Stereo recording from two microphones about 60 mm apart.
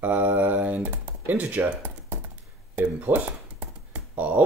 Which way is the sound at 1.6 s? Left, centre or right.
Right.